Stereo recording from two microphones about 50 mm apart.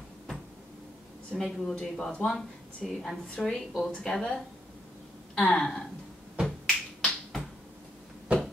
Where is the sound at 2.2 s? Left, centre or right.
Centre.